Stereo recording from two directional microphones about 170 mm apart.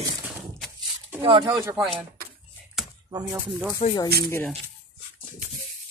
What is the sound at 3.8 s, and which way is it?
Speech, 40° left (ahead or behind).